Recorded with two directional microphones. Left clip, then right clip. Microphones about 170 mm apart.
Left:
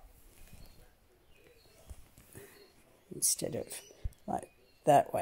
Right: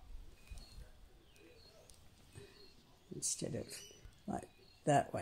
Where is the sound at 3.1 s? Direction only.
30° left (ahead or behind).